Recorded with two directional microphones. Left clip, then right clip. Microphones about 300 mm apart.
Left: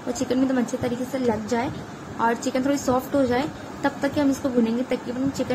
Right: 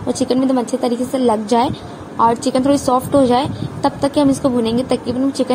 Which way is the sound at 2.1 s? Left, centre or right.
Centre.